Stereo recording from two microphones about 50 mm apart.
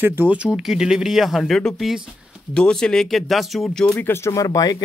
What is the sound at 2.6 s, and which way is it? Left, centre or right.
Speech, centre.